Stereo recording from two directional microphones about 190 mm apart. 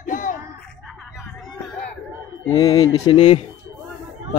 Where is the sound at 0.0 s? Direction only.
45° left (ahead or behind).